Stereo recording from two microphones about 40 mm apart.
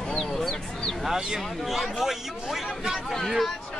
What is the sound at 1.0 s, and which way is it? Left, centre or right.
Speech, centre.